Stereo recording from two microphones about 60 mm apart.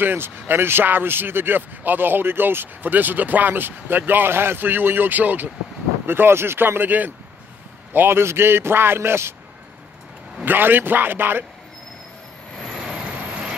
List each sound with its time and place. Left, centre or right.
0.0 s speech: right
10.4 s speech: right
12.7 s vehicle: centre